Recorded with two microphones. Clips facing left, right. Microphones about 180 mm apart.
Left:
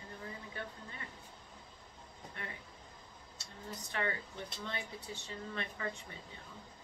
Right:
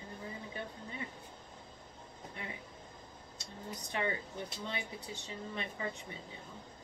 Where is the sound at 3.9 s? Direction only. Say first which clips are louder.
Right 2 dB; 15° right (ahead or behind).